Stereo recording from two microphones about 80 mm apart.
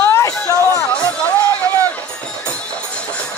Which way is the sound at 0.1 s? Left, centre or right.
Left.